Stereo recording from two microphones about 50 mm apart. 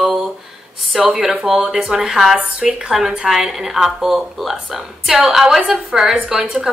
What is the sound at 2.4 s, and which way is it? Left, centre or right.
Speech, right.